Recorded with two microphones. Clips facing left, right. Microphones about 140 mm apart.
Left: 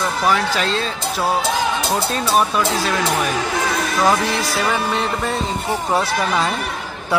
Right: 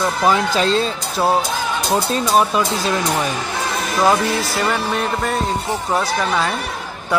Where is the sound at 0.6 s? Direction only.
35° right (ahead or behind).